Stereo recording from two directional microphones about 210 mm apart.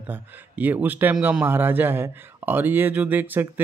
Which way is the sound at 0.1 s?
10° right (ahead or behind).